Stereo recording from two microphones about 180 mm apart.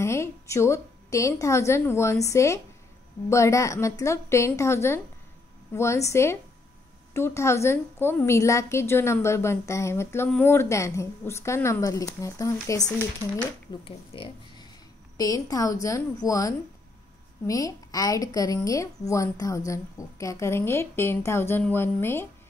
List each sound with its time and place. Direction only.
0.0 s a woman's voice: 15° left (ahead or behind)
13.8 s speech: 30° left (ahead or behind)
15.1 s a woman's voice: 20° left (ahead or behind)